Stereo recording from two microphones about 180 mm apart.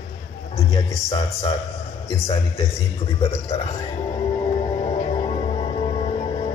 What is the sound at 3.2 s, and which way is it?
Speech, 30° left (ahead or behind).